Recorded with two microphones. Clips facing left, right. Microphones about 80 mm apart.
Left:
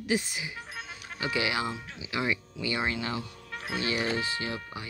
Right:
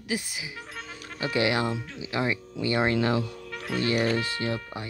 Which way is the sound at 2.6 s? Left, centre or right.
Right.